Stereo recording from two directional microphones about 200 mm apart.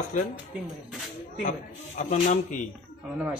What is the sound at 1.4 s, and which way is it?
A man's voice, 40° left (ahead or behind).